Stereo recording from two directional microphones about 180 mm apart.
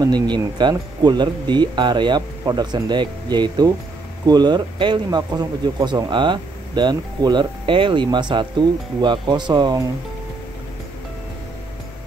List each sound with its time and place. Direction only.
0.0 s speech: 25° right (ahead or behind)